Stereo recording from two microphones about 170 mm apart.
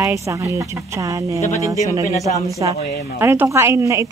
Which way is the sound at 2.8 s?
65° left (ahead or behind).